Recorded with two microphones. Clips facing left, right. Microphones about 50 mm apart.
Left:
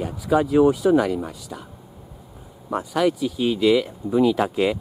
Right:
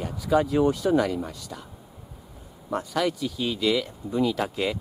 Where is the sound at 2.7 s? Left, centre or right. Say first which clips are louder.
Left 5 dB; centre.